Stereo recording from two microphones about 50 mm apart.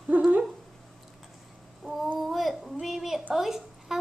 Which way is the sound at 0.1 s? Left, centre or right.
Right.